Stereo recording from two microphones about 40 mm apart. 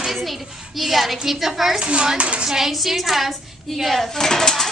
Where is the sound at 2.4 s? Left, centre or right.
Centre.